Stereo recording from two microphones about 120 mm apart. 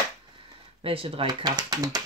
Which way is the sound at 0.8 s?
50° right (ahead or behind).